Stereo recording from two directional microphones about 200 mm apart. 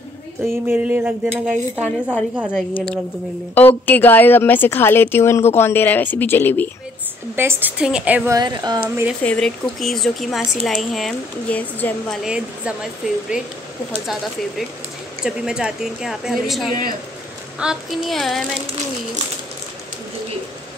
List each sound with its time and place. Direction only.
0.4 s speech: 10° right (ahead or behind)
2.5 s a woman's voice: 5° left (ahead or behind)
7.3 s speech: 10° right (ahead or behind)
8.4 s speech: 20° right (ahead or behind)
9.2 s speech: 5° left (ahead or behind)
15.2 s speech: 5° right (ahead or behind)